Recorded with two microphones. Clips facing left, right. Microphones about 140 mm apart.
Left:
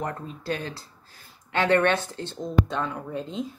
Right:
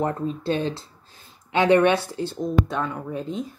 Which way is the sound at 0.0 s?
25° right (ahead or behind).